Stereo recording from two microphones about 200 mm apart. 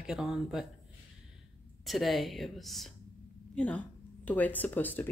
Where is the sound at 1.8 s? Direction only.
Centre (ahead or behind).